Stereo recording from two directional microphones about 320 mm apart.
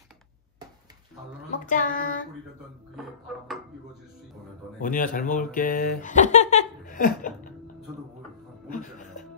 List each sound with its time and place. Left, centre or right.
1.7 s child singing: left
4.7 s speech: left
8.6 s music: left